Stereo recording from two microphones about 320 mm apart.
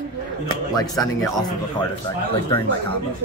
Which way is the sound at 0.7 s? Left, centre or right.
Centre.